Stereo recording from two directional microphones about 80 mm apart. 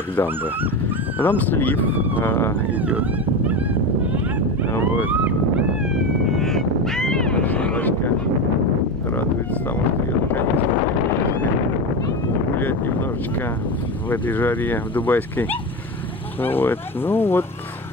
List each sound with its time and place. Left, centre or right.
1.2 s speech: left
2.8 s speech: centre
5.1 s a sound: centre
5.9 s a sound: centre
7.4 s boat: centre
12.5 s wind noise: left
14.1 s speech: left
16.4 s speech: left